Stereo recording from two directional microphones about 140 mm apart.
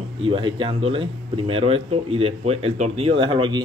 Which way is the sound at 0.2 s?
40° right (ahead or behind).